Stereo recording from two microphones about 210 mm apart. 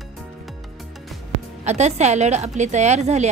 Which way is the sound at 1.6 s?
30° right (ahead or behind).